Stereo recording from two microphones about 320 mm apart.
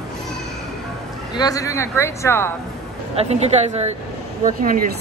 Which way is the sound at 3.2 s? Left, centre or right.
Centre.